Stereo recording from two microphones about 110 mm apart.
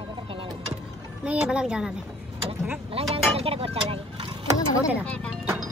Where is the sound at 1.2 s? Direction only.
10° right (ahead or behind).